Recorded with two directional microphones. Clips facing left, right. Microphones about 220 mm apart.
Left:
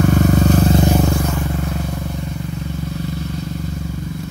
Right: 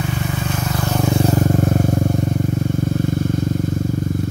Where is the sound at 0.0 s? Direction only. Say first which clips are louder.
Left 9 dB; 50° left (ahead or behind); by 0.8 s 35° left (ahead or behind).